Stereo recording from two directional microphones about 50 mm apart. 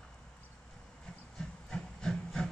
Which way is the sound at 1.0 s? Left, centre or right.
Centre.